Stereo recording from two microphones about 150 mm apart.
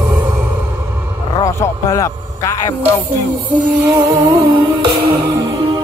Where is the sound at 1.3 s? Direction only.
20° left (ahead or behind).